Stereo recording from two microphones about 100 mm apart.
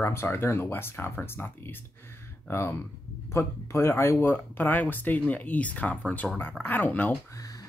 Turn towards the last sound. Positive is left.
turn(degrees=35)  # may be behind; listen again after turning